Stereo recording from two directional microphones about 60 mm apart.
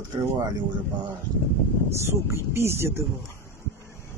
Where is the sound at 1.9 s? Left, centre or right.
Right.